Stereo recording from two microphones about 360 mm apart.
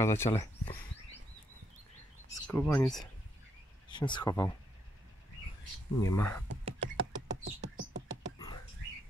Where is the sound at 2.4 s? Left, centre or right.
Centre.